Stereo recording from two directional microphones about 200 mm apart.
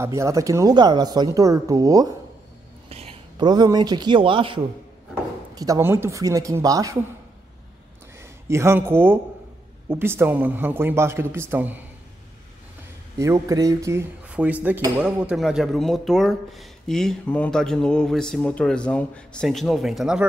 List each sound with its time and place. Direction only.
0.0 s speech: 15° right (ahead or behind)
2.9 s speech: 30° right (ahead or behind)
8.2 s speech: 15° right (ahead or behind)
13.2 s speech: 15° right (ahead or behind)